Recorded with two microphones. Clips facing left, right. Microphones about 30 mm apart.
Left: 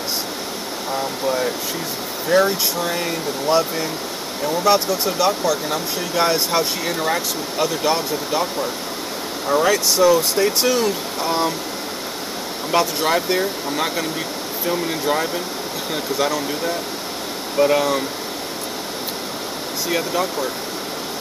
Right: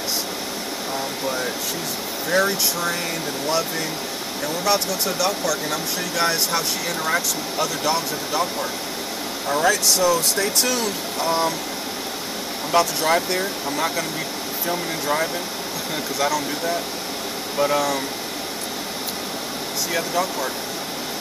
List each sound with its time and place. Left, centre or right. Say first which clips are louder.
0.9 s speech: left 5 dB; centre
9.5 s speech: left 2 dB; centre
12.7 s speech: even; centre
19.9 s speech: left 2 dB; centre